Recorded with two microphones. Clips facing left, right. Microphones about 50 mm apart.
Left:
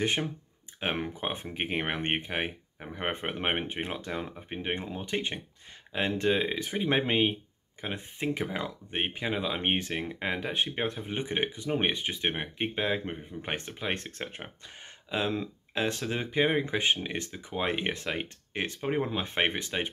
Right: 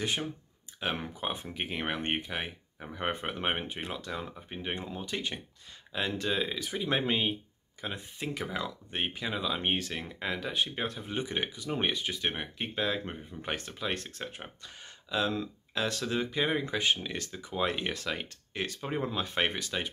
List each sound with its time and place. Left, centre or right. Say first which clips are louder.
0.0 s speech: left 4 dB; left
2.8 s speech: left 1 dB; left
13.4 s speech: even; left